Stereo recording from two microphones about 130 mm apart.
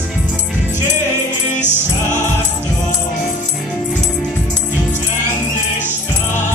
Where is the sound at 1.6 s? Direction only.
15° right (ahead or behind).